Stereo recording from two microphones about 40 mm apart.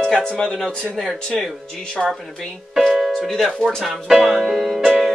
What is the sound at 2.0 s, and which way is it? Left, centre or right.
Music, centre.